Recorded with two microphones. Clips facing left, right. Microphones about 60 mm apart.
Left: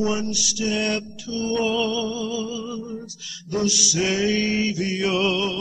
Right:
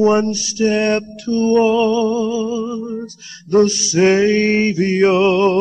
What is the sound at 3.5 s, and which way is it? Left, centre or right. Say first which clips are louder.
Mantra: right 10 dB; right.